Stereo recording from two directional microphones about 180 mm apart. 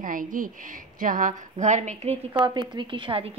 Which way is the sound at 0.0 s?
50° right (ahead or behind).